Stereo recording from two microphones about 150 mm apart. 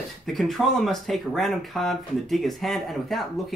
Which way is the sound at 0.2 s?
Centre (ahead or behind).